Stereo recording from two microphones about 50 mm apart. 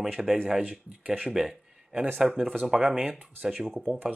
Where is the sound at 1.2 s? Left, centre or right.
Centre.